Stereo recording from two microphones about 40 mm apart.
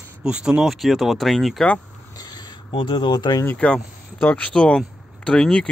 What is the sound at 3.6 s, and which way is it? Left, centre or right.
Speech, left.